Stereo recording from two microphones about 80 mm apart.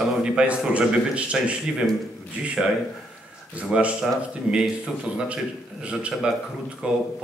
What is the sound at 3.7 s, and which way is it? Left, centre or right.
Speech, centre.